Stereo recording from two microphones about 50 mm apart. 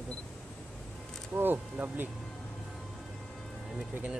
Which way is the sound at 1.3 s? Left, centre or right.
Right.